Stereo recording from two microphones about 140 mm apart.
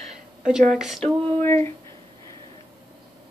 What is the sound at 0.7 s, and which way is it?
Speech, centre (ahead or behind).